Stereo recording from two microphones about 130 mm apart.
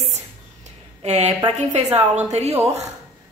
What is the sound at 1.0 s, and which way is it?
A woman's voice, 55° right (ahead or behind).